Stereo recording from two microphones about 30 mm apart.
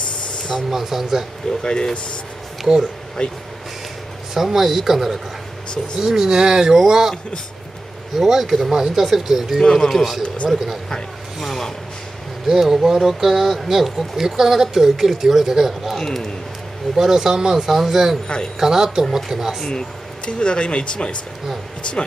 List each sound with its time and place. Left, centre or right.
0.7 s speech: centre
1.6 s a man's voice: left
2.7 s speech: centre
3.2 s speech: left
4.3 s speech: centre
8.2 s speech: centre
9.6 s a man's voice: centre
9.8 s speech: centre
10.2 s speech: left
12.4 s speech: centre
16.0 s speech: centre
16.9 s speech: centre
19.6 s a man's voice: left